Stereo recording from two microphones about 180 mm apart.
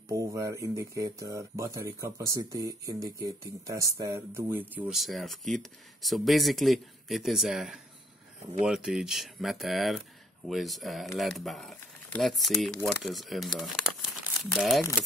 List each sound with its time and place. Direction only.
0.1 s speech: 15° right (ahead or behind); by 14.8 s centre (ahead or behind)